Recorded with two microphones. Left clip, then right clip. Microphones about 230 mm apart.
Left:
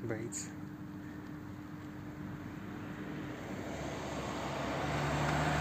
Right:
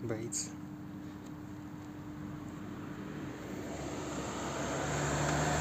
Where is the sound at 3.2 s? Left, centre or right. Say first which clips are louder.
Even; right.